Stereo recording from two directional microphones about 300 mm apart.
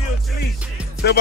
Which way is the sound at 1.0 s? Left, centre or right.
Left.